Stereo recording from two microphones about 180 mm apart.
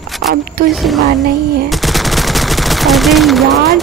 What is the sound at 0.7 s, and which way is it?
Speech, centre (ahead or behind).